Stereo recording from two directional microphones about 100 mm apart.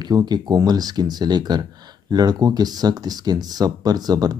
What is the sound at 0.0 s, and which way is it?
Speech, 45° right (ahead or behind).